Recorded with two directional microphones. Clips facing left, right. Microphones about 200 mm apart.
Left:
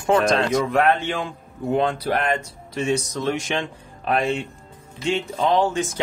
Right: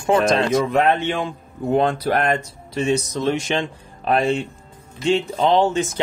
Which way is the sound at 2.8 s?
25° right (ahead or behind).